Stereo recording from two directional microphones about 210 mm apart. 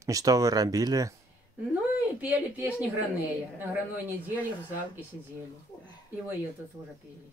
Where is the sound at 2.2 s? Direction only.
5° right (ahead or behind).